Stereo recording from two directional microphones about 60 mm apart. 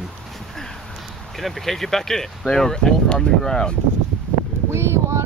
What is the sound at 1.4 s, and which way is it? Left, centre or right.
Speech, centre.